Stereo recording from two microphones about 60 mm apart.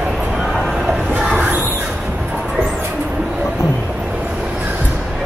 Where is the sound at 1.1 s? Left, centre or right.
Centre.